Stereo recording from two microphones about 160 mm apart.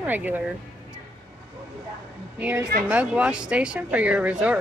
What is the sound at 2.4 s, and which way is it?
Speech, 10° right (ahead or behind).